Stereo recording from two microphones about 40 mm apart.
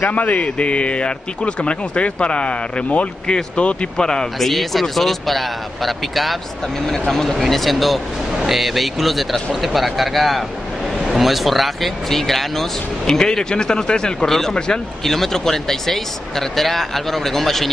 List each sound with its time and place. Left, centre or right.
0.0 s a man's voice: left
4.0 s speech: centre
4.4 s speech: centre